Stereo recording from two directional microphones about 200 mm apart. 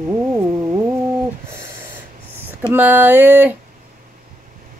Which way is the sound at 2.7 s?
10° right (ahead or behind).